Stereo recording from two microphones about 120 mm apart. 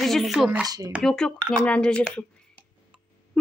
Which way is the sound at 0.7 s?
30° right (ahead or behind).